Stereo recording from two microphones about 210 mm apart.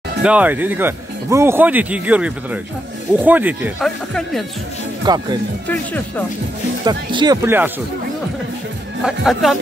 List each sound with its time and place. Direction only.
0.2 s speech: 5° right (ahead or behind)
5.0 s speech: 20° right (ahead or behind)
5.7 s speech: 10° left (ahead or behind)
6.8 s speech: 20° right (ahead or behind)
7.4 s speech: 10° right (ahead or behind)
9.0 s speech: centre (ahead or behind)